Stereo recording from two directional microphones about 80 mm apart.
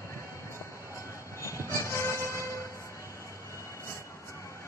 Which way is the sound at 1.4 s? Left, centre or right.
Left.